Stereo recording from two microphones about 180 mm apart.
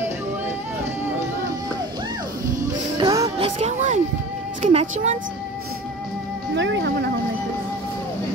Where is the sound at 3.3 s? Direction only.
35° right (ahead or behind).